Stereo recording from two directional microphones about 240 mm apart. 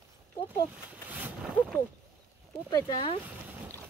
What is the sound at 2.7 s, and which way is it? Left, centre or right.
Speech, centre.